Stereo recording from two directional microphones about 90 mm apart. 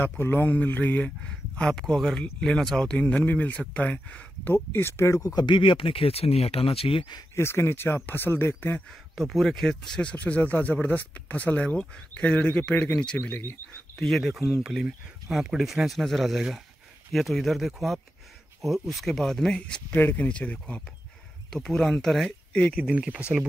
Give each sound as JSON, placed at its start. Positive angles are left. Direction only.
{"t": 0.0, "sound": "speech", "side_deg": 25}
{"t": 5.3, "sound": "speech", "side_deg": 55}
{"t": 7.3, "sound": "speech", "side_deg": 30}
{"t": 9.1, "sound": "speech", "side_deg": 0}
{"t": 13.3, "sound": "speech", "side_deg": 25}
{"t": 13.9, "sound": "speech", "side_deg": 5}
{"t": 19.9, "sound": "speech", "side_deg": 20}
{"t": 22.8, "sound": "speech", "side_deg": -15}